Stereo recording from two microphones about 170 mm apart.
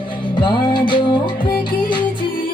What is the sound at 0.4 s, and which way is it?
Music, 30° left (ahead or behind).